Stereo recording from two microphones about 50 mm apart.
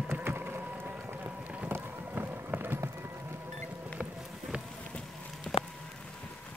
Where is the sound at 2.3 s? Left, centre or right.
Right.